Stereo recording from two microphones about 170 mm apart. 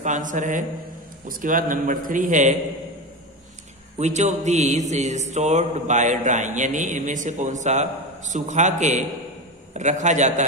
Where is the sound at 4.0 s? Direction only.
45° right (ahead or behind).